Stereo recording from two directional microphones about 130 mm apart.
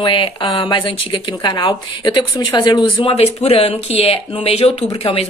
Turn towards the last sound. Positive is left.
turn(degrees=45)  # may be behind; listen again after turning